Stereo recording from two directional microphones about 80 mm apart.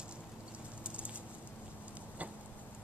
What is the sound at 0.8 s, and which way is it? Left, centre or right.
Bird, centre.